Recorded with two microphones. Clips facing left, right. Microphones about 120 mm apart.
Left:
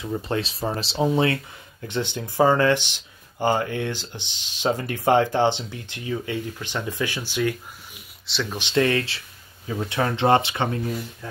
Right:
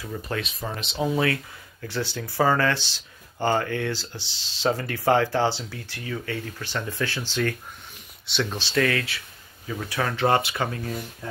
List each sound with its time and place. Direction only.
0.0 s speech: 25° left (ahead or behind)
8.3 s speech: centre (ahead or behind)
8.5 s speech: 20° left (ahead or behind)